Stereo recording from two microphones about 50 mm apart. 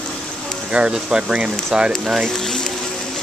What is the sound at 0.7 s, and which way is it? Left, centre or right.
Speech, right.